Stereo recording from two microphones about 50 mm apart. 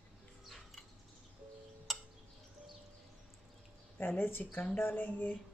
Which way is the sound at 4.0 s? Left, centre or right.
Left.